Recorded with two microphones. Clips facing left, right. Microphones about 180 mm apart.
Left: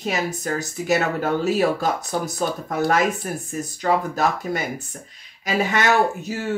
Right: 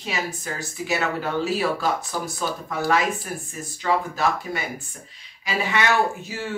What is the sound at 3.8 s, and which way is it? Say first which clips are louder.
Speech: left 2 dB; 45° left (ahead or behind).